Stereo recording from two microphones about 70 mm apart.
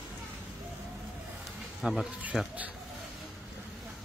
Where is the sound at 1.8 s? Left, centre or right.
Centre.